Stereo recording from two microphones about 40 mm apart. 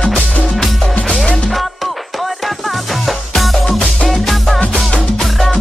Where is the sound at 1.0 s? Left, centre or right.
Left.